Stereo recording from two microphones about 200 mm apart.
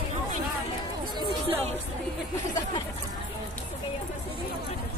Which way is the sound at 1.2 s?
25° right (ahead or behind).